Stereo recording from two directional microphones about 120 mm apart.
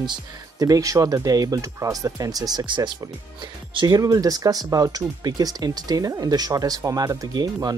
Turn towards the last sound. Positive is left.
turn(degrees=-35)  # may be behind; listen again after turning